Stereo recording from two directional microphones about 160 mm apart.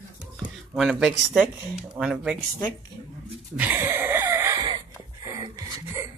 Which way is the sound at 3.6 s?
10° right (ahead or behind).